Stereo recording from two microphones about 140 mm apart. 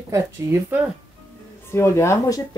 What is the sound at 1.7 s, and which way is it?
Speech, 15° left (ahead or behind).